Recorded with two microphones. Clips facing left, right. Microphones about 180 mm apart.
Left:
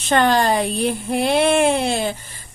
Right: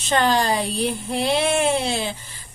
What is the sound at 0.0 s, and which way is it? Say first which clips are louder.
Speech: left 3 dB; 55° left (ahead or behind).